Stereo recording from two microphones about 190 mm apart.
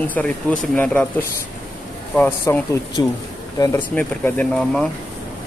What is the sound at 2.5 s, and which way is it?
Speech, 15° left (ahead or behind).